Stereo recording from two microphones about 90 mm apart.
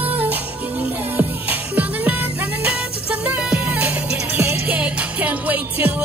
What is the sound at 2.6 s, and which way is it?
Music, 15° right (ahead or behind).